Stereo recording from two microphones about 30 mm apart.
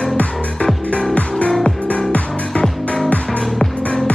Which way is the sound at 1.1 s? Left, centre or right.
Left.